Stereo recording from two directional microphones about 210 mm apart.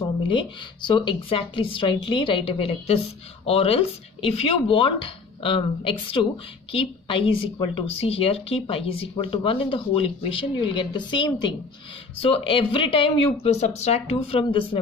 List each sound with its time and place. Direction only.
0.0 s speech: 25° left (ahead or behind)